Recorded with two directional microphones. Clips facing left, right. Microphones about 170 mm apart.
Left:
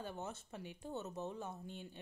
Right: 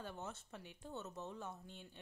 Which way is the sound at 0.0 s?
10° left (ahead or behind).